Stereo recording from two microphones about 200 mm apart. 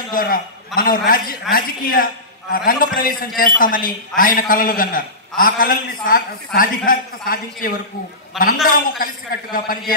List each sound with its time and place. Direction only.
0.1 s a man's voice: 45° left (ahead or behind)
8.3 s a man's voice: centre (ahead or behind)
9.0 s a man's voice: 45° left (ahead or behind)